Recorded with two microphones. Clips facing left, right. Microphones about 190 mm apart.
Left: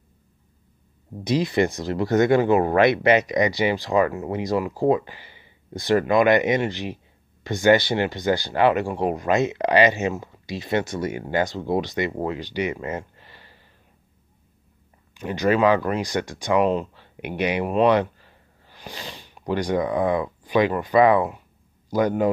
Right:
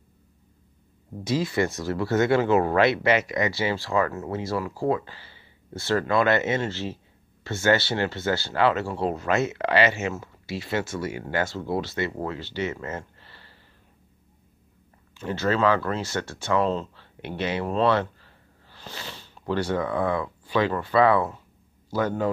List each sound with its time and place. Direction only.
1.2 s speech: 15° left (ahead or behind)
15.1 s speech: 15° left (ahead or behind)